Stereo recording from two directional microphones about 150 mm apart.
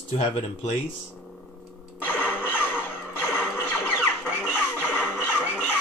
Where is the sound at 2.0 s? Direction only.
10° left (ahead or behind).